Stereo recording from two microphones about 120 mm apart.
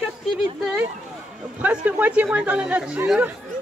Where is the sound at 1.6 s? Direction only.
15° right (ahead or behind).